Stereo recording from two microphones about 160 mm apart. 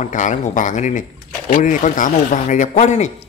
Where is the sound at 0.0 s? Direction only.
50° left (ahead or behind).